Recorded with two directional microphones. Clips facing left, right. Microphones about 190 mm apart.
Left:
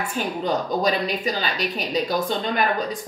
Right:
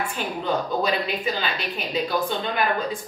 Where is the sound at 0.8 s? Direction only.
40° left (ahead or behind).